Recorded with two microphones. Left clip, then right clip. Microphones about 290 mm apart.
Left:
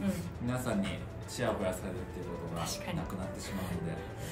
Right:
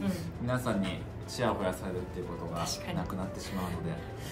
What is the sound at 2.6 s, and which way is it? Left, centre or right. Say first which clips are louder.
Speech: right 3 dB; centre.